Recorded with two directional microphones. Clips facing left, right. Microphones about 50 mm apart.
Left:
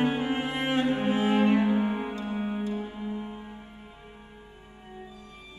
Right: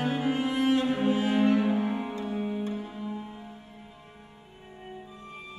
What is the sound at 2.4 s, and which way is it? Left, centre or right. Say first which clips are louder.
Music: even; left.